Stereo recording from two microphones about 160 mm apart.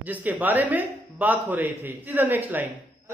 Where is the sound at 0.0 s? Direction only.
10° right (ahead or behind).